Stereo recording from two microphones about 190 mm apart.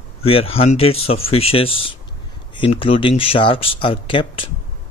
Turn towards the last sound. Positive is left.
turn(degrees=25)  # may be behind; listen again after turning